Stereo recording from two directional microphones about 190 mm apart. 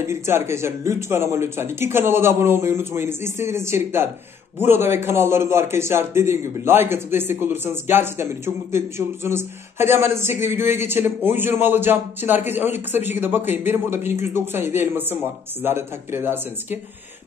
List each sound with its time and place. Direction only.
0.0 s speech: 15° right (ahead or behind)